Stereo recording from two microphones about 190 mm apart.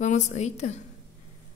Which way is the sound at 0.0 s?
40° left (ahead or behind).